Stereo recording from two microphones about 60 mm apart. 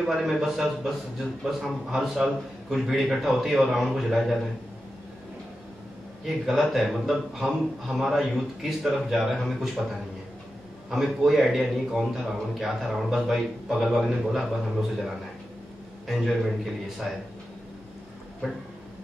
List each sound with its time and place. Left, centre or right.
0.0 s a man's voice: centre
6.2 s a man's voice: centre
10.9 s a man's voice: centre
16.1 s a man's voice: centre